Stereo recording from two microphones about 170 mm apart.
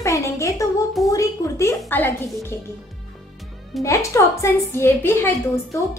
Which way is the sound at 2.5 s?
15° left (ahead or behind).